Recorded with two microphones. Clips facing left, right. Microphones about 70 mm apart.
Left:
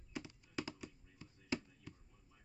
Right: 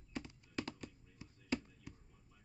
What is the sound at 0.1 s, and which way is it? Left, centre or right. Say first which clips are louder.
Computer keyboard: right 1 dB; centre.